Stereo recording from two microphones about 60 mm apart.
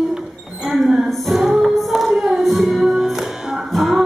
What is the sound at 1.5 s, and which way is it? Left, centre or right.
Music, centre.